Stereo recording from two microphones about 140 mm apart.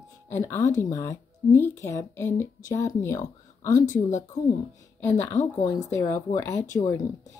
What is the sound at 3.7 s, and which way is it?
Speech, 65° left (ahead or behind).